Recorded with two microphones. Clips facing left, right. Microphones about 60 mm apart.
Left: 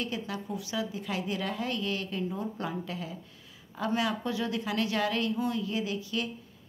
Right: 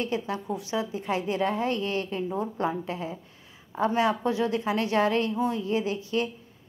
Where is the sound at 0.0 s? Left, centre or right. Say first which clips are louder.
Right 5 dB; right.